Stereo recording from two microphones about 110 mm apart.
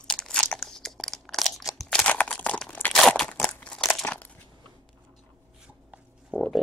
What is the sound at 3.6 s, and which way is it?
Crumpling, 5° left (ahead or behind).